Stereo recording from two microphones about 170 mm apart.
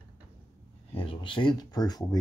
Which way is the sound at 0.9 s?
30° left (ahead or behind).